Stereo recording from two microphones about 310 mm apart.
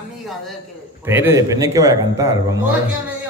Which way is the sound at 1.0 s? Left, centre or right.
Centre.